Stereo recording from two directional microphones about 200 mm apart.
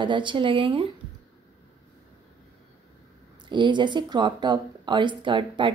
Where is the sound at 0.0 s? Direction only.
25° right (ahead or behind).